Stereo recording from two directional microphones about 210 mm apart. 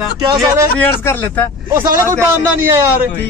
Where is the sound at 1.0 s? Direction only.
10° left (ahead or behind).